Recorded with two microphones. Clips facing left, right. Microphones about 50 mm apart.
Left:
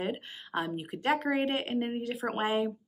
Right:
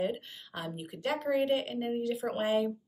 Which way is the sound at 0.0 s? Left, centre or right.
Left.